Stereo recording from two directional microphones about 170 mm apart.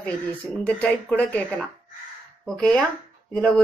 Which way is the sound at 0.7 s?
10° left (ahead or behind).